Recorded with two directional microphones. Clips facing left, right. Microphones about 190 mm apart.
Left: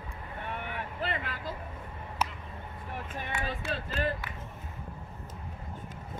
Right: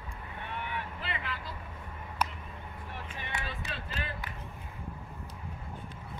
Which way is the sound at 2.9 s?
50° left (ahead or behind).